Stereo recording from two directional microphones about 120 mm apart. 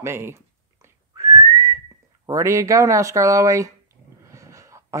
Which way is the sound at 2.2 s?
25° right (ahead or behind).